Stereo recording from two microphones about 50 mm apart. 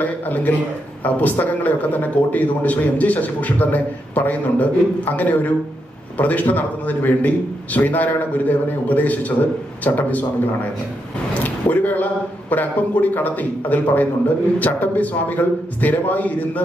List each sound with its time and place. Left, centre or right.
0.0 s a man's voice: left
11.4 s a man's voice: left